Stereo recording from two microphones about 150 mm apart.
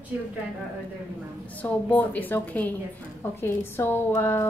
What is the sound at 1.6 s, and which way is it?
A woman's voice, 10° left (ahead or behind).